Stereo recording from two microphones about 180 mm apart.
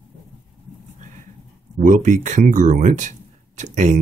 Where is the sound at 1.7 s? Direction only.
45° right (ahead or behind).